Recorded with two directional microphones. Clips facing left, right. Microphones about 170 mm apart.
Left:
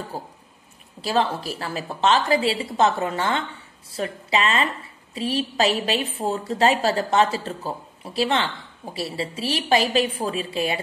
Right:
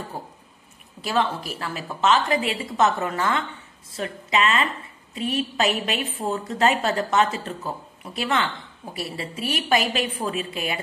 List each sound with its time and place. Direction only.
1.0 s a woman's voice: 35° left (ahead or behind)